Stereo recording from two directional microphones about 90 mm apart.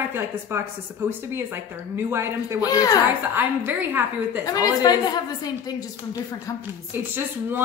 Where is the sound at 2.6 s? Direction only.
45° left (ahead or behind).